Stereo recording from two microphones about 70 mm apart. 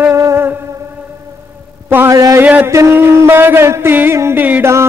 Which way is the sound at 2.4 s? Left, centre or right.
Right.